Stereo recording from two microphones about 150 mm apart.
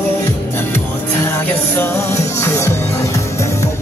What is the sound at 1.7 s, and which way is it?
Music, 20° left (ahead or behind).